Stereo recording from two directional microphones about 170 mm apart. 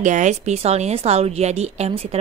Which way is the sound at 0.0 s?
45° right (ahead or behind).